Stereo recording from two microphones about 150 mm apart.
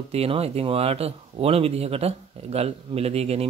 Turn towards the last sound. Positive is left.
turn(degrees=-45)  # may be behind; listen again after turning